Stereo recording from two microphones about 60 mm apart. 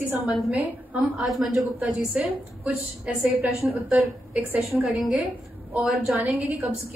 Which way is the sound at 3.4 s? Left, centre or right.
Right.